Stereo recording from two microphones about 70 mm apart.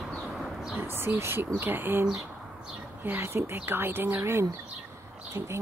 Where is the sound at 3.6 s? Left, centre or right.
Right.